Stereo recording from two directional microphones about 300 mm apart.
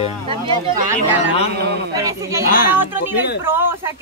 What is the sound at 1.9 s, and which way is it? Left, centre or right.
Speech, centre.